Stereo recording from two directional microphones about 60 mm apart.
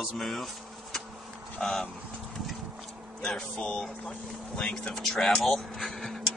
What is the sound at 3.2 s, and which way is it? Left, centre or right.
Speech, centre.